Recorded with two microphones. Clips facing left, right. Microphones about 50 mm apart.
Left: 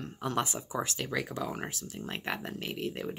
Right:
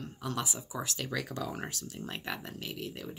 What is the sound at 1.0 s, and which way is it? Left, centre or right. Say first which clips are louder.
Speech: left 2 dB; centre.